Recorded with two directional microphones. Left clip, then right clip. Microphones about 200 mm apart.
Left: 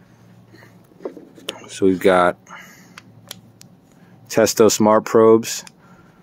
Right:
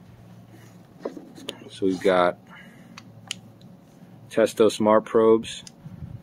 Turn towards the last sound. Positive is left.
turn(degrees=55)  # may be behind; listen again after turning